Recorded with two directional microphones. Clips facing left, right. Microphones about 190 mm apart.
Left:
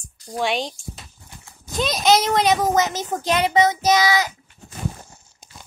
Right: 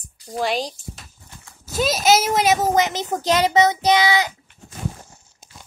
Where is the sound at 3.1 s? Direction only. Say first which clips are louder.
Right 2 dB; 35° right (ahead or behind).